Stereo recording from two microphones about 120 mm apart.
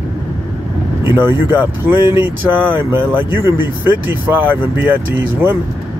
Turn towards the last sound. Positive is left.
turn(degrees=-15)  # may be behind; listen again after turning